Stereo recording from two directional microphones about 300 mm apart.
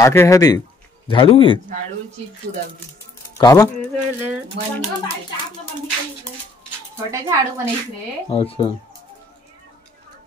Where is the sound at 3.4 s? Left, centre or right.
Centre.